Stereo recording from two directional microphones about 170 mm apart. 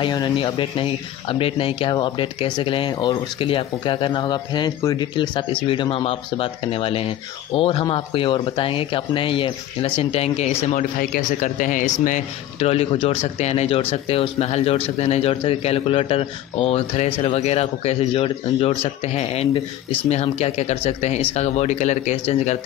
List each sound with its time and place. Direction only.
0.0 s speech: 25° left (ahead or behind)